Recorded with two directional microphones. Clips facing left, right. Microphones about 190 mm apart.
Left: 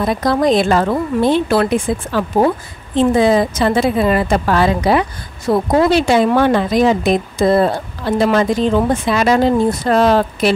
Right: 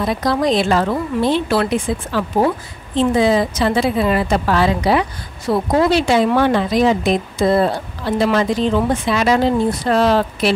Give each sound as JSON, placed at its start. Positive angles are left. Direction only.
{"t": 0.0, "sound": "a woman's voice", "side_deg": 50}